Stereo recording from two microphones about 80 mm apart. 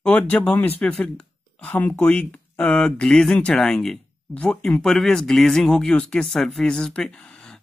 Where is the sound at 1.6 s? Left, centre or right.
Left.